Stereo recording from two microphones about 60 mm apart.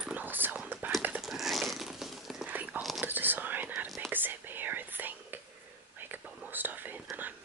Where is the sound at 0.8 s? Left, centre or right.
Right.